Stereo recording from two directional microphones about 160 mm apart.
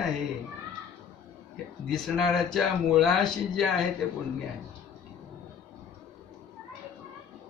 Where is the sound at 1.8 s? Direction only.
Centre (ahead or behind).